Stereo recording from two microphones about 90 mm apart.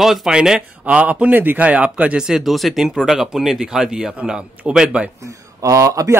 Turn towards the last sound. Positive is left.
turn(degrees=-35)  # may be behind; listen again after turning